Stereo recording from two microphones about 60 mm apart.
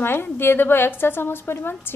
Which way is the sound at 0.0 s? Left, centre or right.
Left.